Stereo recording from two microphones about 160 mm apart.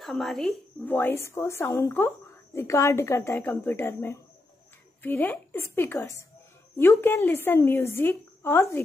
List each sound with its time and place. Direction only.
0.0 s a woman's voice: centre (ahead or behind)
0.8 s speech: 15° left (ahead or behind)